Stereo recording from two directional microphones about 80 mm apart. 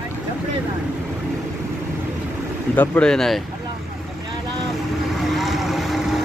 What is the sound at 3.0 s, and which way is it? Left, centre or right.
Speech, centre.